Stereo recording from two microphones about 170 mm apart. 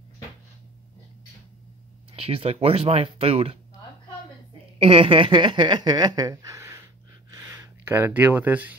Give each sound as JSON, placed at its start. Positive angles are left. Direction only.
{"t": 2.1, "sound": "speech", "side_deg": -35}
{"t": 4.7, "sound": "speech", "side_deg": -35}
{"t": 7.3, "sound": "a sound", "side_deg": -15}